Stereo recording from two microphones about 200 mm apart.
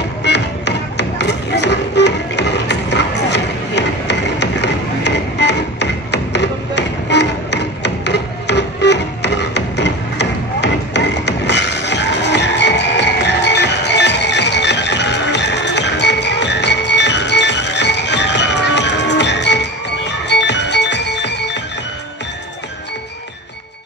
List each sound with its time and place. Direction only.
0.2 s music: 60° left (ahead or behind)